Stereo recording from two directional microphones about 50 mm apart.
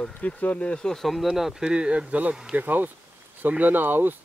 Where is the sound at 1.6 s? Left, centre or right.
Right.